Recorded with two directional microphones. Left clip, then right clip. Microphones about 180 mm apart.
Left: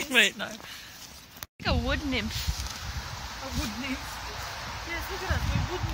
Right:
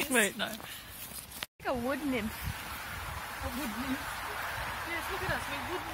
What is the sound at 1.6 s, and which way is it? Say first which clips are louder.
Speech: left 4 dB; 5° left (ahead or behind).